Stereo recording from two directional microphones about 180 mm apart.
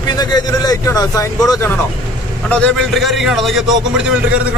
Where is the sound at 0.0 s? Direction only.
20° left (ahead or behind).